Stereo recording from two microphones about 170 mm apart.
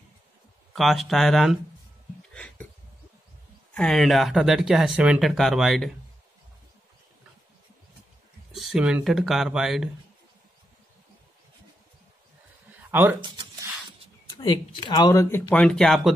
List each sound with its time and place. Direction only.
0.7 s speech: centre (ahead or behind)
2.3 s a sound: 5° left (ahead or behind)
3.7 s speech: 5° left (ahead or behind)
8.5 s speech: 5° right (ahead or behind)
13.2 s a sound: 25° right (ahead or behind)
14.3 s speech: 25° left (ahead or behind)
15.5 s speech: 5° left (ahead or behind)